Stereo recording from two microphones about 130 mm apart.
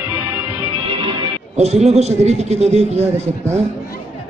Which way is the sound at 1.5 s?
60° right (ahead or behind).